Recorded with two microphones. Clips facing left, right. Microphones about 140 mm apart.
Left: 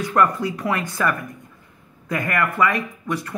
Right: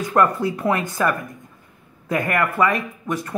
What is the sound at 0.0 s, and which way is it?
Speech, 20° right (ahead or behind).